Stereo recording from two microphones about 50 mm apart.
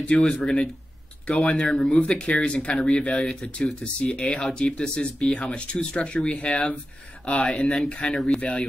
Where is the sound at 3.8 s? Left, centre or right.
Centre.